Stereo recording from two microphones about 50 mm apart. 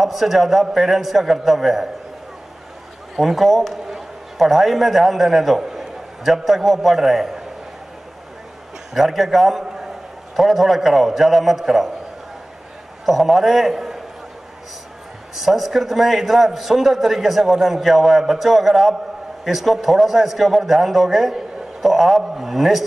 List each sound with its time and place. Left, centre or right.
0.0 s a man's voice: centre
3.2 s a man's voice: centre
8.9 s a man's voice: centre
13.0 s a man's voice: centre
15.4 s a man's voice: centre